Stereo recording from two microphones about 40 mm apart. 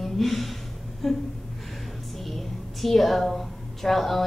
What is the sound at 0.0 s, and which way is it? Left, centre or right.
Gasp, centre.